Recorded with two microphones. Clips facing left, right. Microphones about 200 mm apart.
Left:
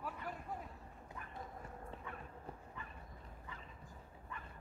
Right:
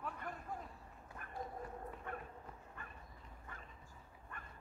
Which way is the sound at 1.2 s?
55° right (ahead or behind).